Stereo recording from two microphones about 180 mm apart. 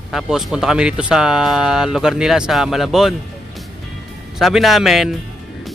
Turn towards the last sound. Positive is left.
turn(degrees=0)  # may be behind; listen again after turning